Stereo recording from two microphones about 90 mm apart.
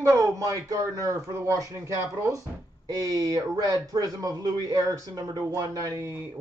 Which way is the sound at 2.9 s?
45° right (ahead or behind).